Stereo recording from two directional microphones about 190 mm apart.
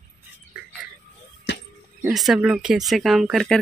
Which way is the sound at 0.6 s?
5° right (ahead or behind).